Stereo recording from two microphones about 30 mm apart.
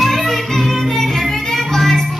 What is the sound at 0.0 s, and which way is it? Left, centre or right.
Music, centre.